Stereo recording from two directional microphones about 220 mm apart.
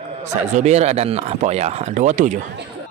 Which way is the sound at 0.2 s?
30° right (ahead or behind).